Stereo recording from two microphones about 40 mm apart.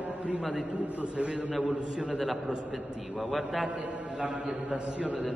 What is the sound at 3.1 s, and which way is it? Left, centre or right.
Speech, centre.